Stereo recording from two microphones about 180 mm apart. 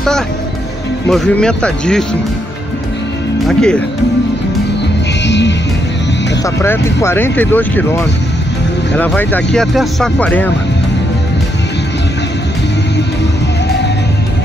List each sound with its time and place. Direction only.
1.0 s speech: 5° left (ahead or behind)
3.4 s speech: 5° left (ahead or behind)
5.2 s music: 75° left (ahead or behind)
6.4 s speech: 15° left (ahead or behind)